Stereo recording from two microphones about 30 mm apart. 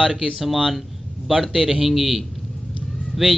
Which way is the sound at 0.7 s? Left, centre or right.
Centre.